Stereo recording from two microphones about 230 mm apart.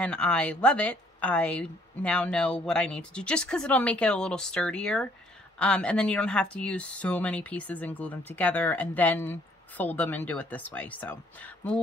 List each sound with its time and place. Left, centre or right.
0.0 s a woman's voice: centre